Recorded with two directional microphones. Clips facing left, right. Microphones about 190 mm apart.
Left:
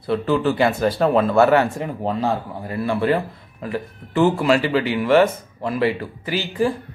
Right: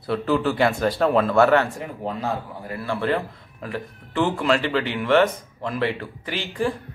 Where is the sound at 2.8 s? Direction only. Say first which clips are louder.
Left 4 dB; 15° left (ahead or behind).